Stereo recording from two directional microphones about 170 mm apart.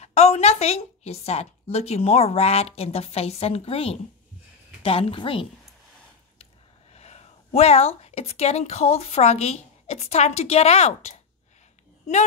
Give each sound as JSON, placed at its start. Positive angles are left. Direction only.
{"t": 0.0, "sound": "a woman's voice", "side_deg": 40}
{"t": 6.9, "sound": "speech", "side_deg": 40}